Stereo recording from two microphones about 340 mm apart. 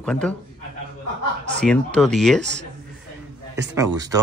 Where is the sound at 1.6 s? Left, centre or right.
Centre.